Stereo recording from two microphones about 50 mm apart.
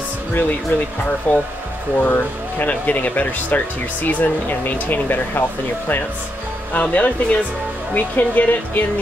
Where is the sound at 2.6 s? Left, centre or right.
Left.